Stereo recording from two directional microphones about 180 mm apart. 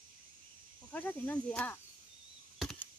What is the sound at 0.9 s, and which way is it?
Speech, 10° left (ahead or behind).